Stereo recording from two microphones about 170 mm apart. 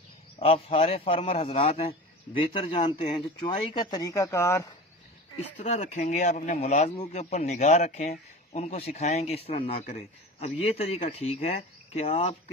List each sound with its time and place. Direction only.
0.4 s a man's voice: 35° left (ahead or behind); by 4.7 s 15° left (ahead or behind)
5.6 s a man's voice: 45° left (ahead or behind)